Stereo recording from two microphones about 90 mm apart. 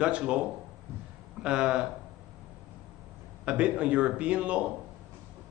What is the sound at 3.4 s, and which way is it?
A man's voice, 10° right (ahead or behind).